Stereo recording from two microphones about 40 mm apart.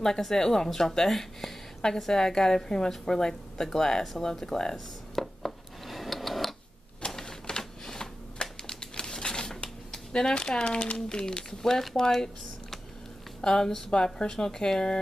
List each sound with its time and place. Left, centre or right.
0.0 s a woman's voice: centre
4.3 s a sound: centre
7.1 s typewriter: centre; by 11.0 s left
11.0 s speech: centre
11.6 s a woman's voice: centre
13.4 s a woman's voice: centre
13.9 s a woman's voice: left